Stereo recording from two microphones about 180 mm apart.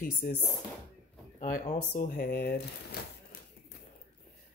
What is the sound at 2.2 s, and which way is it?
Speech, 60° left (ahead or behind).